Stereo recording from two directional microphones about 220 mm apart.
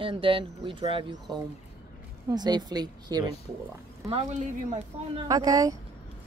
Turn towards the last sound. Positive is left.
turn(degrees=-15)  # may be behind; listen again after turning